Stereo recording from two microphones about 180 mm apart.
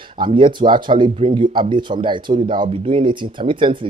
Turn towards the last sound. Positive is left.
turn(degrees=-30)  # may be behind; listen again after turning